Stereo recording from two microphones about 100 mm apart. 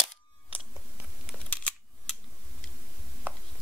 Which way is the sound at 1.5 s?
10° left (ahead or behind).